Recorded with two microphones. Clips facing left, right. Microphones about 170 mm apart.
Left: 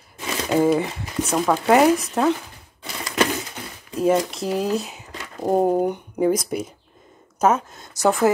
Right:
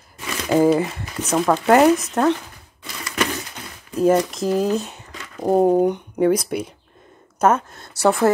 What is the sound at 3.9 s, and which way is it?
Speech, centre (ahead or behind).